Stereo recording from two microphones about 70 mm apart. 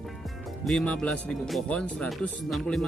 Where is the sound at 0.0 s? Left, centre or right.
Centre.